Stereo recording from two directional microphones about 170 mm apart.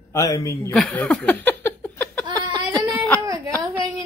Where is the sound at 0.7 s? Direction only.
5° left (ahead or behind).